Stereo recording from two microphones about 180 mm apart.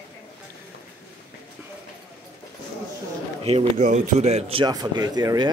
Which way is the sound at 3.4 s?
35° right (ahead or behind).